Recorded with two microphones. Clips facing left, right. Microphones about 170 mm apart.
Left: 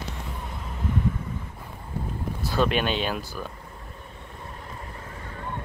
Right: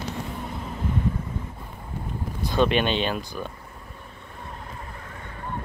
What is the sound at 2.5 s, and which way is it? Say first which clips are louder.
Speech: right 2 dB; 5° left (ahead or behind).